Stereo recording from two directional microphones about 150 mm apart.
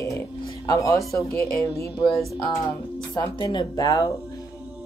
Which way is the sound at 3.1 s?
25° left (ahead or behind).